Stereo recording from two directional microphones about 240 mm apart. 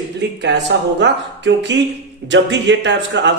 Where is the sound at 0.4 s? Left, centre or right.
Right.